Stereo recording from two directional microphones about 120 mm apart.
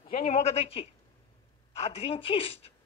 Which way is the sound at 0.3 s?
65° left (ahead or behind).